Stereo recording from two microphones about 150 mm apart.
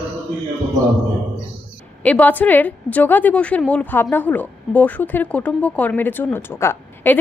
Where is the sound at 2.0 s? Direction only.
10° left (ahead or behind).